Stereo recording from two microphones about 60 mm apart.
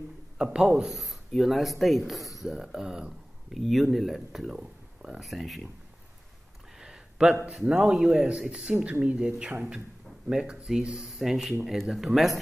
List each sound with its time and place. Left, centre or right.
0.4 s a man's voice: centre
5.2 s speech: centre
6.8 s a sound: centre
7.5 s speech: centre
8.3 s speech: centre
11.1 s speech: centre